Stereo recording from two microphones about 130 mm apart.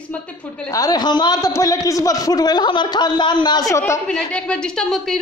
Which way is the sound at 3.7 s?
20° left (ahead or behind).